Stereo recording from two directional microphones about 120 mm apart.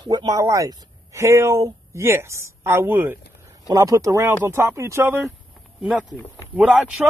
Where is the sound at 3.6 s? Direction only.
30° right (ahead or behind).